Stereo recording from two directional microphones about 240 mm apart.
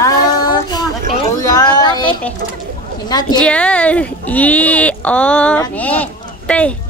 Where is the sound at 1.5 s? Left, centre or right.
Centre.